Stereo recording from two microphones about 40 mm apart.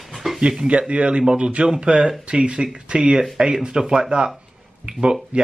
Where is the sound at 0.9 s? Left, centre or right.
Right.